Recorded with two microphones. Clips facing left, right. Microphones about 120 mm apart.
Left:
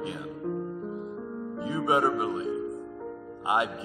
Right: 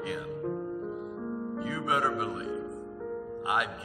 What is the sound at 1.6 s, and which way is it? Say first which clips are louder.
Speech: left 5 dB; 25° left (ahead or behind).